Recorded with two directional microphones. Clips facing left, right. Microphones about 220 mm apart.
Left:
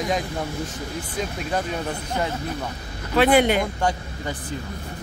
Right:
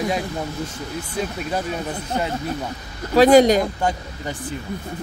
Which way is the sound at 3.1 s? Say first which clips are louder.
Right 5 dB; 40° right (ahead or behind).